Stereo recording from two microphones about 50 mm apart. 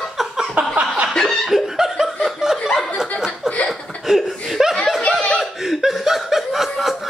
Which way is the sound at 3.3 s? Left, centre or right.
Left.